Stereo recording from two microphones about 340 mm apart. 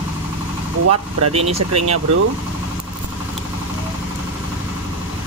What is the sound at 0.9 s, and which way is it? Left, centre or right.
Speech, right.